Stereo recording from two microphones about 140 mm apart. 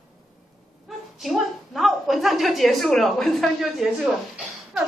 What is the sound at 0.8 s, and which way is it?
A woman's voice, centre (ahead or behind).